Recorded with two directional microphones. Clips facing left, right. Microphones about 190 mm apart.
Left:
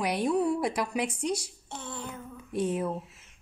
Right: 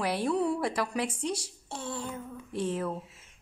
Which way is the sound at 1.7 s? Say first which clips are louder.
Right 3 dB; 25° right (ahead or behind).